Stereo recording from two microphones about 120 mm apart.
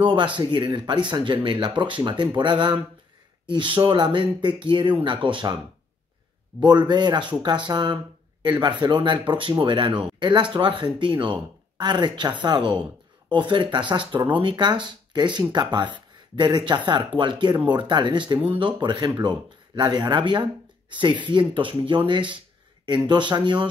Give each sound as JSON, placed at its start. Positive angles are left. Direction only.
{"t": 0.0, "sound": "speech", "side_deg": -45}
{"t": 6.6, "sound": "speech", "side_deg": -35}